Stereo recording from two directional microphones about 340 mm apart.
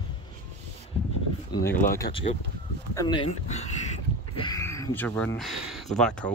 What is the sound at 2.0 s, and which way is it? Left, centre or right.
Speech, centre.